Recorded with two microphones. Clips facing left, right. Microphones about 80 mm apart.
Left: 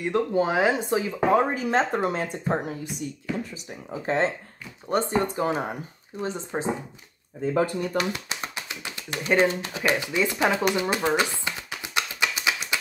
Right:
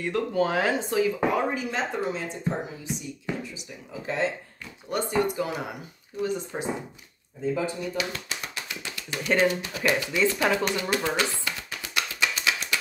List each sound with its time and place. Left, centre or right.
0.0 s speech: left
1.3 s speech: left
7.5 s speech: left
8.5 s tap: left
9.4 s speech: left
10.8 s a sound: left